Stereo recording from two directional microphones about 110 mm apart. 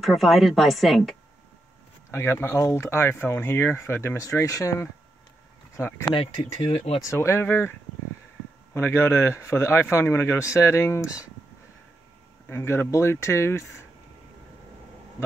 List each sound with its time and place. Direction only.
0.0 s speech: centre (ahead or behind)
2.0 s speech: 25° left (ahead or behind)
8.7 s speech: 20° left (ahead or behind)
12.4 s speech: 20° left (ahead or behind)